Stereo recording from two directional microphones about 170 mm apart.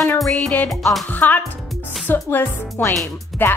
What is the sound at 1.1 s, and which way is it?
Speech, 10° left (ahead or behind).